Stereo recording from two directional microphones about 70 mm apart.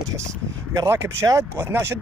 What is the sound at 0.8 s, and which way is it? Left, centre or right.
Speech, right.